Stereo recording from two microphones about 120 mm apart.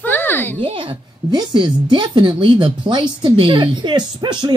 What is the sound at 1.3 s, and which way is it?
Speech, 35° right (ahead or behind).